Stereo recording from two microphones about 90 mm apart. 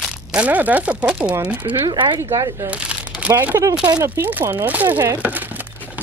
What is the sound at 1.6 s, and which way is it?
Speech, 90° right.